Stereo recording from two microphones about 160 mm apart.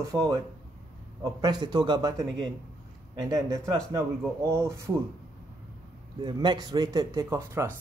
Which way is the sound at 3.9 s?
15° right (ahead or behind).